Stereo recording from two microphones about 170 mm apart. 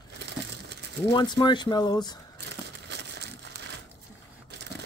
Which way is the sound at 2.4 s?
80° right.